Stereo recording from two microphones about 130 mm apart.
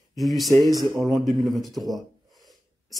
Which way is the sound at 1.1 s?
Centre (ahead or behind).